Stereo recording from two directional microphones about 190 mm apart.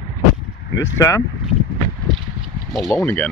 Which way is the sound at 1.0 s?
15° left (ahead or behind).